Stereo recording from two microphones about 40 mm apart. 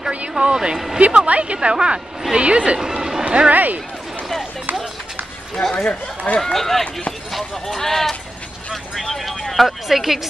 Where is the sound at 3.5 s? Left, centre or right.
Right.